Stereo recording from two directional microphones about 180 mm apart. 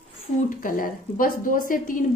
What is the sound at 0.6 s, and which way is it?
A woman's voice, 50° left (ahead or behind).